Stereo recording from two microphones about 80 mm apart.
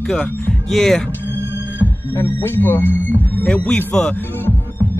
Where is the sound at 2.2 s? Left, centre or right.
Left.